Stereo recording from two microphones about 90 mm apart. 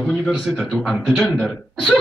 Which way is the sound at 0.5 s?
5° right (ahead or behind).